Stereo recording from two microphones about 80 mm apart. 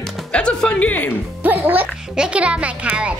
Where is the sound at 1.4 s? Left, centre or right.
Right.